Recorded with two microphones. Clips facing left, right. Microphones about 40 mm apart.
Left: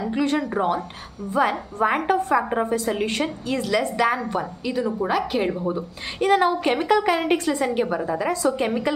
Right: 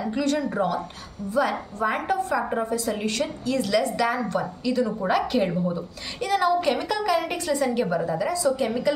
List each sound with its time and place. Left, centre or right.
0.1 s a woman's voice: left
5.8 s a woman's voice: left
8.2 s a woman's voice: left